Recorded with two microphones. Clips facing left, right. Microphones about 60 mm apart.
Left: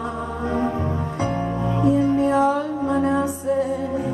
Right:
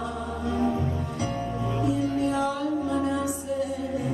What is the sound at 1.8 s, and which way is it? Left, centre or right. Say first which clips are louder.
Music: left 8 dB; left.